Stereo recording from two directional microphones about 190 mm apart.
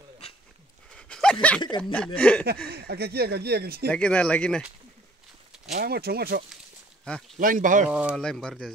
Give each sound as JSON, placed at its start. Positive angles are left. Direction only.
{"t": 0.2, "sound": "livestock", "side_deg": 35}
{"t": 0.9, "sound": "a sound", "side_deg": 5}
{"t": 1.8, "sound": "speech", "side_deg": 10}
{"t": 2.7, "sound": "speech", "side_deg": -55}
{"t": 3.9, "sound": "speech", "side_deg": 5}
{"t": 5.7, "sound": "speech", "side_deg": -55}
{"t": 7.1, "sound": "speech", "side_deg": 5}
{"t": 7.3, "sound": "speech", "side_deg": -45}
{"t": 7.9, "sound": "speech", "side_deg": -5}